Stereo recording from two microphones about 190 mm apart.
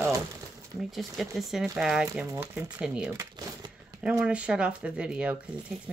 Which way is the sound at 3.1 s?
20° right (ahead or behind).